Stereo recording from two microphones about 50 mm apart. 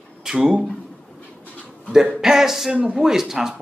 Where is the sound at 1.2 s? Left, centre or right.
Left.